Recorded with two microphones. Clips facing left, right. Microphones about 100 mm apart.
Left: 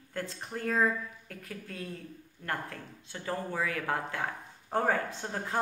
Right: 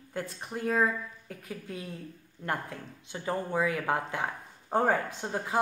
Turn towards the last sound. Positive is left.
turn(degrees=-15)  # may be behind; listen again after turning